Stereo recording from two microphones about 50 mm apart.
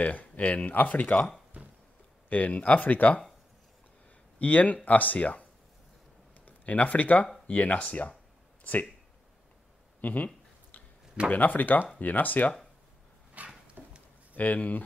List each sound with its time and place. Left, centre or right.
0.0 s speech: left
1.6 s a sound: right
2.2 s speech: left
4.4 s speech: left
10.0 s a sound: left
11.3 s speech: left
13.4 s dog: right
13.8 s a sound: centre
14.3 s speech: left